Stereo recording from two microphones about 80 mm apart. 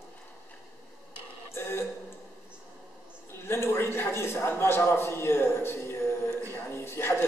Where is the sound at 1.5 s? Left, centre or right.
Left.